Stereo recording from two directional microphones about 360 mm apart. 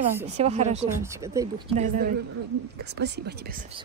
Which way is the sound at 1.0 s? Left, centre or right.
Centre.